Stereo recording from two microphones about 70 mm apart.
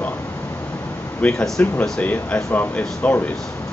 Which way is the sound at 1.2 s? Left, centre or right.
Centre.